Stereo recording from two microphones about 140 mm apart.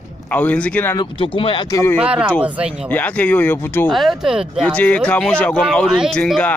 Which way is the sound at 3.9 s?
Centre (ahead or behind).